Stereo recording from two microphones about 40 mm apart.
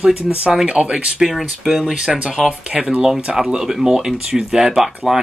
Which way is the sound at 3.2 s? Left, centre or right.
Centre.